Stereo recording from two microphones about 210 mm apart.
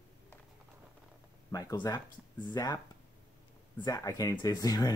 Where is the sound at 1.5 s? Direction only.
15° left (ahead or behind).